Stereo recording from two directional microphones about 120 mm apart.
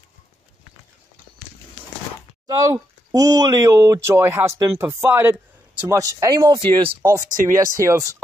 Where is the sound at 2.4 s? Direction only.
30° right (ahead or behind).